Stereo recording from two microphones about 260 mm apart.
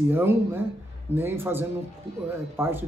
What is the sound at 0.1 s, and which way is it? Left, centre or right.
Speech, centre.